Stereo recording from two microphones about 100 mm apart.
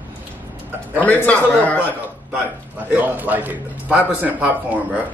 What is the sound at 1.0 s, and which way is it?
Speech, 15° left (ahead or behind).